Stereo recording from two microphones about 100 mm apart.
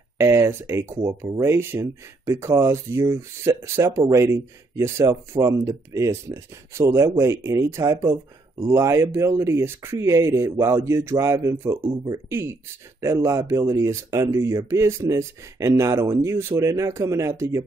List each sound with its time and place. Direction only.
0.2 s speech: 30° right (ahead or behind)